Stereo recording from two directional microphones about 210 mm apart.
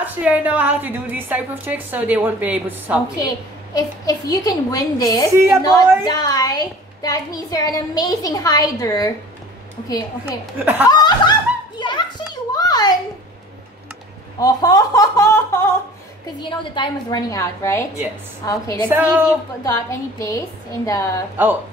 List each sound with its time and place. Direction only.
0.0 s a woman's voice: 5° right (ahead or behind)
3.7 s a woman's voice: 15° left (ahead or behind)
5.3 s a woman's voice: 15° right (ahead or behind)
5.6 s a woman's voice: 20° left (ahead or behind)
10.6 s a woman's voice: 5° right (ahead or behind)
10.9 s snicker: 20° left (ahead or behind)
12.5 s a sound: 20° left (ahead or behind)
14.4 s a woman's voice: 20° left (ahead or behind)
18.9 s a woman's voice: 10° right (ahead or behind)
19.6 s a woman's voice: 15° left (ahead or behind)